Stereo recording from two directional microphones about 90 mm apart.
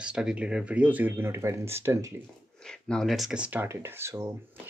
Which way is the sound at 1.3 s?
30° right (ahead or behind).